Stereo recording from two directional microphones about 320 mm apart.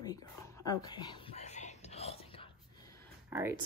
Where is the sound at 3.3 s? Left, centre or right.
Centre.